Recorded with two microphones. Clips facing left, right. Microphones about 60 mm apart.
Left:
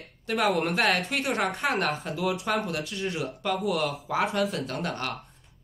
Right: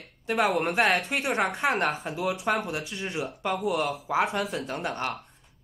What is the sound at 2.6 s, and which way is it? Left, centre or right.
Speech, centre.